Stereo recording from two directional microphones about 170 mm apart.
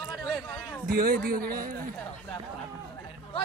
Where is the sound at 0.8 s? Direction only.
65° right (ahead or behind).